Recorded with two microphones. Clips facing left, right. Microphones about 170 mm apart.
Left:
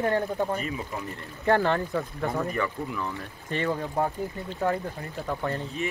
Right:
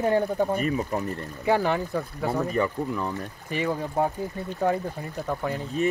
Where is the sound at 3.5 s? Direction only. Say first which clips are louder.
Right 1 dB; 10° right (ahead or behind).